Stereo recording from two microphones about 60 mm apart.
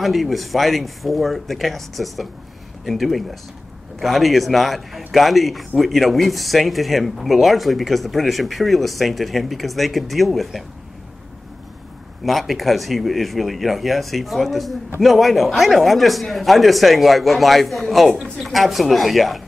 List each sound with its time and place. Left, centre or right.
0.0 s speech: centre
12.3 s speech: centre